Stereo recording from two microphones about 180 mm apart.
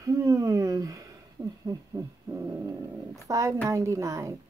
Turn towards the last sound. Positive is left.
turn(degrees=-15)  # may be behind; listen again after turning